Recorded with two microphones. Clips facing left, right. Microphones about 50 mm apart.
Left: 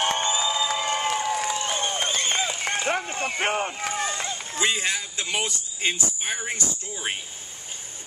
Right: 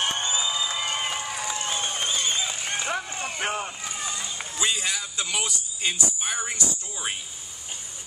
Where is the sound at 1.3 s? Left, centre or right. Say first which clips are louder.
Left 4 dB; left.